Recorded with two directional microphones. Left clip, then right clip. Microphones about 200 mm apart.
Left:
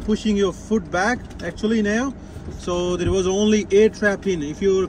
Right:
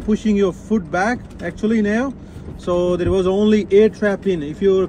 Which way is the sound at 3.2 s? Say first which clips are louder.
Right 1 dB; 15° left (ahead or behind).